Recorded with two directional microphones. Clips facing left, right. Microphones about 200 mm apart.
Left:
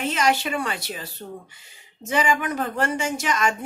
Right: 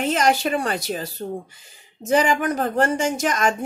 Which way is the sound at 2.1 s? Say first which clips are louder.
Right 4 dB; 40° right (ahead or behind).